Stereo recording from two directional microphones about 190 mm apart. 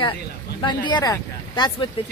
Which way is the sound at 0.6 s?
25° left (ahead or behind).